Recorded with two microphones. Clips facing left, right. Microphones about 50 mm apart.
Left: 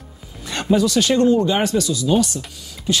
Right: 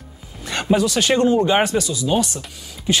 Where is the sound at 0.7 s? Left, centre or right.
Right.